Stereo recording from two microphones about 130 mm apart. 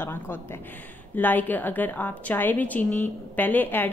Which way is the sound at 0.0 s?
15° left (ahead or behind).